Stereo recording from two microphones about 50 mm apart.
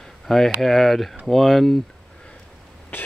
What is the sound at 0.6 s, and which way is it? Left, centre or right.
Speech, centre.